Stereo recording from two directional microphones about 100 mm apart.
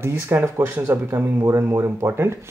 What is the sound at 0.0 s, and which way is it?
Speech, 25° right (ahead or behind).